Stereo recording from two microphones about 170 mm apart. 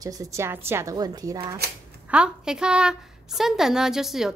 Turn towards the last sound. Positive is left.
turn(degrees=0)  # may be behind; listen again after turning